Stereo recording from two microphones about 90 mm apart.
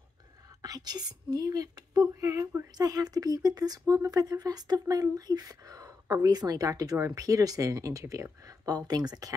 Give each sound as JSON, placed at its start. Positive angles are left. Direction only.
{"t": 0.6, "sound": "speech", "side_deg": -45}